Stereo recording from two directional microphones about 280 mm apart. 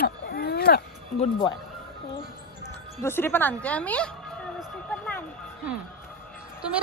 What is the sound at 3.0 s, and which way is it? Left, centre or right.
A woman's voice, centre.